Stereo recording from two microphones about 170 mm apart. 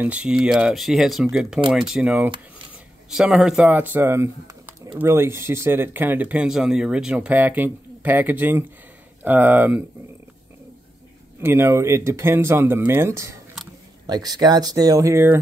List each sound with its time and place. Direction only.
0.0 s speech: 5° right (ahead or behind)
11.4 s speech: 15° right (ahead or behind)